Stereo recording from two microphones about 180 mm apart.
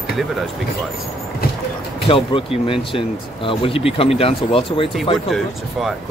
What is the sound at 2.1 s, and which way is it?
Speech, 30° left (ahead or behind).